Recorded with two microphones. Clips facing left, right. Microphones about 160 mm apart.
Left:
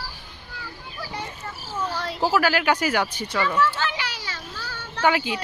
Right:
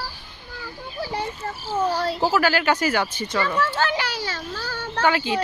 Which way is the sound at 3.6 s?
40° right (ahead or behind).